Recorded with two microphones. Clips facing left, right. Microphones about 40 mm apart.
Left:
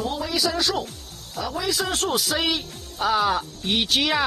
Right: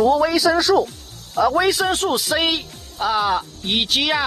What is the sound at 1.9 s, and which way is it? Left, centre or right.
Speech, centre.